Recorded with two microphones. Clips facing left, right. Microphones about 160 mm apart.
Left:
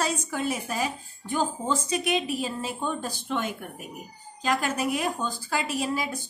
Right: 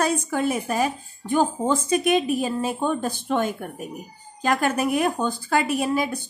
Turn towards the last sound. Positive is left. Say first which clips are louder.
# right 6 dB
turn(degrees=-55)  # may be behind; listen again after turning